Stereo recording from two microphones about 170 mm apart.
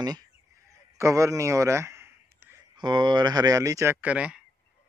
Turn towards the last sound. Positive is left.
turn(degrees=-5)  # may be behind; listen again after turning